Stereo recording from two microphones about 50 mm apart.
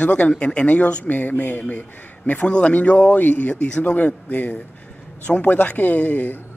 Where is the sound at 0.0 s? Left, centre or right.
Left.